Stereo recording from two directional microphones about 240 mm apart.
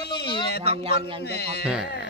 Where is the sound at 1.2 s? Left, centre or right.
Left.